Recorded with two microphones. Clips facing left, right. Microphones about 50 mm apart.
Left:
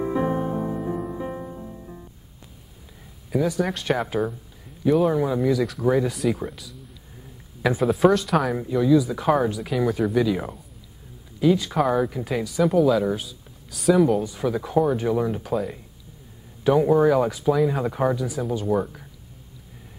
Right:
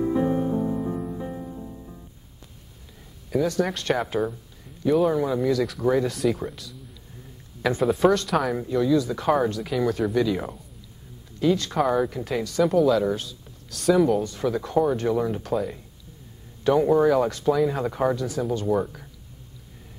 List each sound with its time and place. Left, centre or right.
0.1 s music: left
3.0 s speech: centre